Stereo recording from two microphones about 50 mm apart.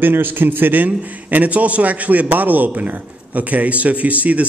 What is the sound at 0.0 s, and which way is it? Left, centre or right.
A man's voice, right.